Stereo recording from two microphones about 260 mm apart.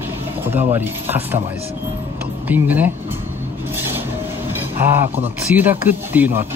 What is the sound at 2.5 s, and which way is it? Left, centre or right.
Speech, centre.